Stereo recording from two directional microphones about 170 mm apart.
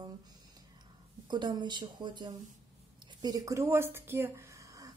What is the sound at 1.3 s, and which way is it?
A woman's voice, 25° right (ahead or behind).